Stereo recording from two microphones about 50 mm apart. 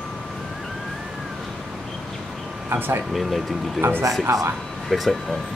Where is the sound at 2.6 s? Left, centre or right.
Right.